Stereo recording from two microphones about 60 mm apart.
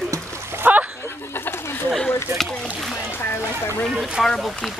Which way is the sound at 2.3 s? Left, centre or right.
Right.